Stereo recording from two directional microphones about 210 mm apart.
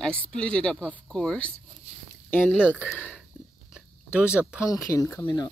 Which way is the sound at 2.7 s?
5° right (ahead or behind).